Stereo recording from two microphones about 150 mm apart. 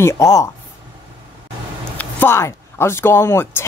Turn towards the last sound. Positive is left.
turn(degrees=15)  # may be behind; listen again after turning